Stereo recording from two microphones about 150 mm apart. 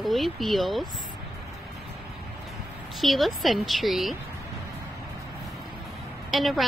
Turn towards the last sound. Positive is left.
turn(degrees=0)  # may be behind; listen again after turning